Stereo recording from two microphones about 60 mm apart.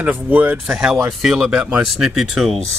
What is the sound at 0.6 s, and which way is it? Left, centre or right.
Speech, centre.